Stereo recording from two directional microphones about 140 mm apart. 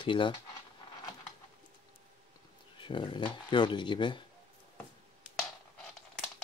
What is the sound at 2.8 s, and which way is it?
Speech, 35° left (ahead or behind).